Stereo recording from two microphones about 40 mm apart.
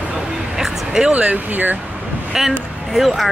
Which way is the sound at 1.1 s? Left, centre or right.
Right.